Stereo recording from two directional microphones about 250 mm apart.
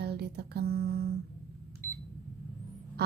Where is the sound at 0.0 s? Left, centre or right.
Right.